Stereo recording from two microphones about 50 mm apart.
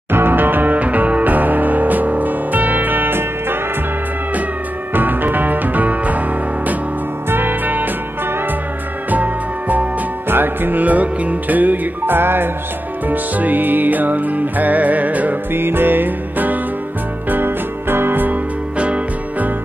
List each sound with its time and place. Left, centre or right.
0.1 s music: right
4.9 s music: right
7.2 s music: right
9.1 s music: right
10.2 s music: right
15.5 s music: right